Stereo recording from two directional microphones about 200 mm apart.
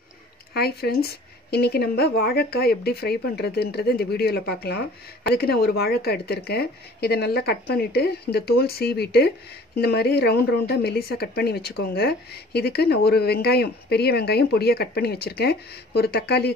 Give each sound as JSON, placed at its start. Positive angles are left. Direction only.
{"t": 0.6, "sound": "speech", "side_deg": 50}